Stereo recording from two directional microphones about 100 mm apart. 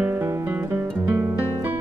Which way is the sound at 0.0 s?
25° right (ahead or behind).